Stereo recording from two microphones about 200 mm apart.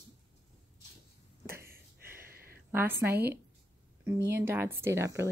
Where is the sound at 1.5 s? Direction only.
15° right (ahead or behind).